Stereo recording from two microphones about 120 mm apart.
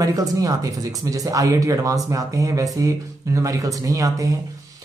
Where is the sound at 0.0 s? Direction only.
30° right (ahead or behind).